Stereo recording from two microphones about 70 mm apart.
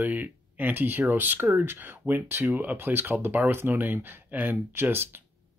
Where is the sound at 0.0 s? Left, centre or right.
Right.